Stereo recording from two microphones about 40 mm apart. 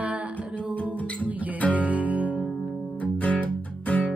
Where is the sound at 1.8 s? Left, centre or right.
Right.